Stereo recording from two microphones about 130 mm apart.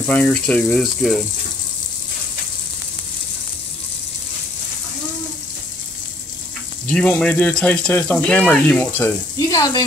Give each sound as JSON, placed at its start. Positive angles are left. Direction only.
{"t": 0.0, "sound": "speech", "side_deg": 10}
{"t": 6.9, "sound": "speech", "side_deg": 5}
{"t": 9.5, "sound": "speech", "side_deg": 30}